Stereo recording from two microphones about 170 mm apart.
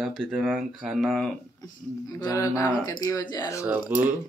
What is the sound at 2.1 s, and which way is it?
Speech, 20° left (ahead or behind).